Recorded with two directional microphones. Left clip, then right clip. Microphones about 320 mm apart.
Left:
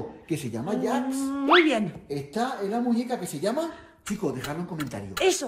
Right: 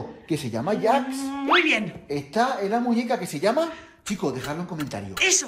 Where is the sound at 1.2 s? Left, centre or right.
Centre.